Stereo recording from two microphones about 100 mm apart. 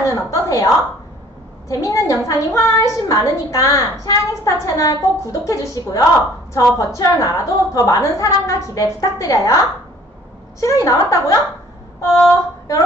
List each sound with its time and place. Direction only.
0.0 s a sound: 35° left (ahead or behind)
1.7 s a woman's voice: 35° left (ahead or behind)
10.6 s a woman's voice: 30° left (ahead or behind)